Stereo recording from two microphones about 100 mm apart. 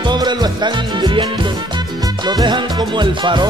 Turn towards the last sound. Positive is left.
turn(degrees=-50)  # may be behind; listen again after turning